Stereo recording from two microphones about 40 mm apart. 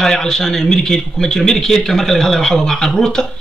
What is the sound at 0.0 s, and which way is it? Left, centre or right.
Speech, centre.